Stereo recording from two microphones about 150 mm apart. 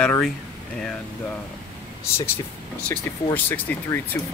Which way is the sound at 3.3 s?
10° left (ahead or behind).